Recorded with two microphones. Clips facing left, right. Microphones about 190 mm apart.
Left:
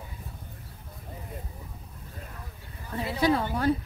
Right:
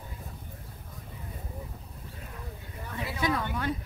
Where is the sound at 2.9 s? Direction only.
35° left (ahead or behind).